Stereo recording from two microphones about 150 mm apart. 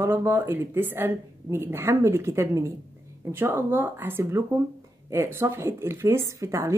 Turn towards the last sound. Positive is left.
turn(degrees=-20)  # may be behind; listen again after turning